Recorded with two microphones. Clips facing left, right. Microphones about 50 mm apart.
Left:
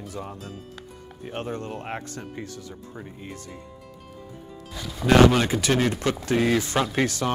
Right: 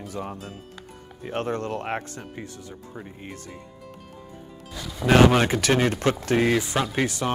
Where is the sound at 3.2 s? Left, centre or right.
Right.